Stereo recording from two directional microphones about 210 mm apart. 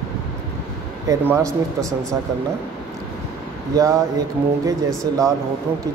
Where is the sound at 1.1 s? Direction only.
10° right (ahead or behind).